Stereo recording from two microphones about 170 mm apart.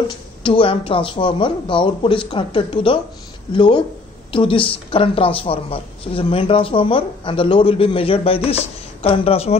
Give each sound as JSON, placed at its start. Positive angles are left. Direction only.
{"t": 0.4, "sound": "speech", "side_deg": 30}